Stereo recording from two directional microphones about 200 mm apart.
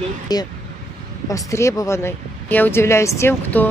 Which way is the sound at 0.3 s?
20° left (ahead or behind).